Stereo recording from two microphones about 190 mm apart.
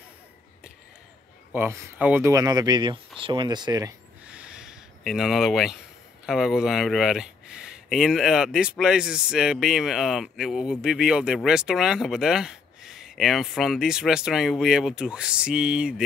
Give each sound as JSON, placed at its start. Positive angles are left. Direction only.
{"t": 1.5, "sound": "speech", "side_deg": -10}
{"t": 4.3, "sound": "a sound", "side_deg": -5}
{"t": 6.2, "sound": "speech", "side_deg": -5}